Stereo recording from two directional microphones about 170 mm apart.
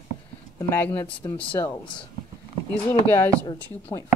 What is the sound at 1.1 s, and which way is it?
Speech, 30° left (ahead or behind).